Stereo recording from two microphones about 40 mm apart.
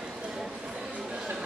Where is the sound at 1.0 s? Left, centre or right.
Centre.